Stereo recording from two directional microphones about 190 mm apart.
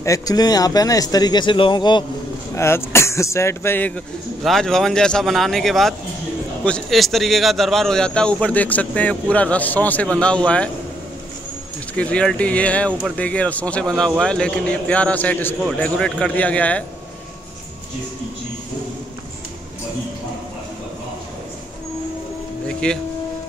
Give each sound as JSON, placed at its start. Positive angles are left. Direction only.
{"t": 0.0, "sound": "speech", "side_deg": 20}
{"t": 2.5, "sound": "a man's voice", "side_deg": 15}
{"t": 11.9, "sound": "speech", "side_deg": 5}
{"t": 22.7, "sound": "a sound", "side_deg": 5}